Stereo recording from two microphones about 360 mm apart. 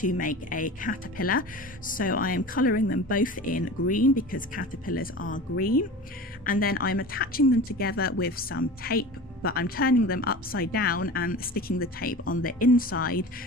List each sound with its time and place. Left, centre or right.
0.0 s a woman's voice: left